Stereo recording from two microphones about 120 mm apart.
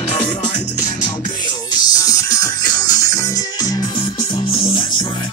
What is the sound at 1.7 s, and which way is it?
Music, 30° left (ahead or behind).